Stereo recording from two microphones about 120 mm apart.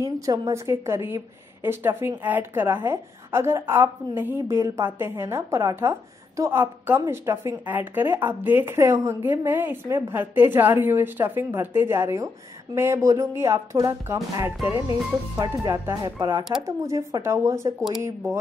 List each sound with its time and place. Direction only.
0.0 s a woman's voice: 25° right (ahead or behind)